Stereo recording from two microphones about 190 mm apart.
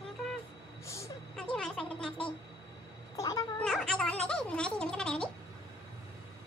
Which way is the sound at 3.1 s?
20° left (ahead or behind).